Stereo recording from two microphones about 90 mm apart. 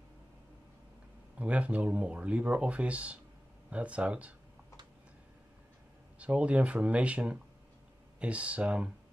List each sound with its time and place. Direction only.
1.4 s speech: 15° right (ahead or behind)
6.1 s speech: 15° right (ahead or behind)